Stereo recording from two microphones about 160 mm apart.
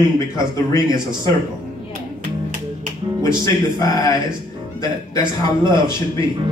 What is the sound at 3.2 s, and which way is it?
Speech, 20° left (ahead or behind).